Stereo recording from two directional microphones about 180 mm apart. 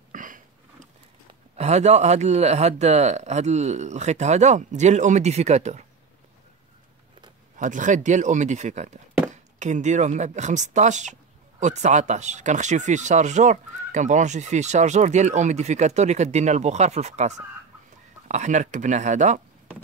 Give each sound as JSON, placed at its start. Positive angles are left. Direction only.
{"t": 0.1, "sound": "sniff", "side_deg": -45}
{"t": 1.6, "sound": "speech", "side_deg": -40}
{"t": 7.5, "sound": "speech", "side_deg": -45}